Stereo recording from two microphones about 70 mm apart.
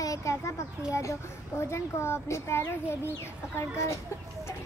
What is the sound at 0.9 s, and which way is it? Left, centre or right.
A child's voice, left.